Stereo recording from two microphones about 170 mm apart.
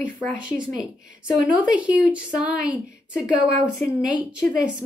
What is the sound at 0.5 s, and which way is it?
Speech, 5° right (ahead or behind).